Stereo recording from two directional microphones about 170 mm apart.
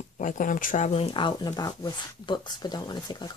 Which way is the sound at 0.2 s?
50° left (ahead or behind).